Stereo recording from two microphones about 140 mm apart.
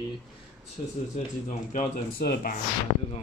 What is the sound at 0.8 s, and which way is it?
Speech, 50° left (ahead or behind).